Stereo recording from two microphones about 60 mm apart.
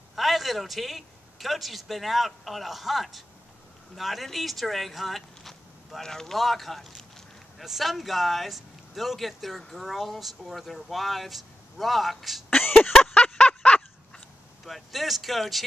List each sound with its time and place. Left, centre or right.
0.1 s a man's voice: centre
12.9 s a sound: centre
14.6 s speech: centre